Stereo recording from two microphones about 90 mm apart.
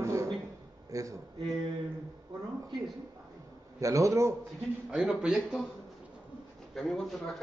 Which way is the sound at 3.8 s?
40° right (ahead or behind).